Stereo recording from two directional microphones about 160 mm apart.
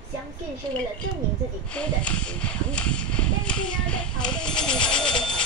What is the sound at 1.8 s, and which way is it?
Speech, 5° left (ahead or behind).